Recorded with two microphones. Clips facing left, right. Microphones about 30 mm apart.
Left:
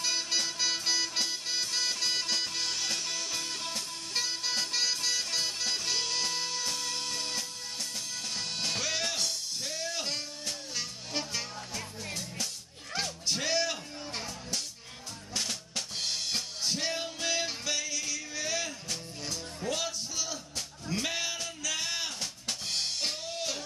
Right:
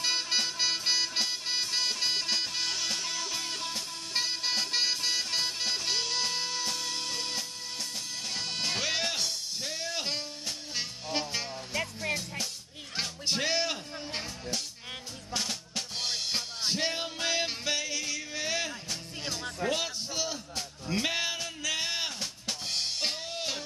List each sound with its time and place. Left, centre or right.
0.0 s music: centre
12.9 s music: centre
15.3 s drum kit: centre
16.6 s music: centre
22.2 s drum kit: centre